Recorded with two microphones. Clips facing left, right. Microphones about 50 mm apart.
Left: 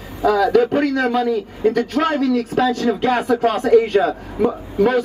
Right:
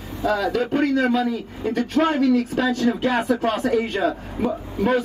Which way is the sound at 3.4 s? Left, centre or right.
Left.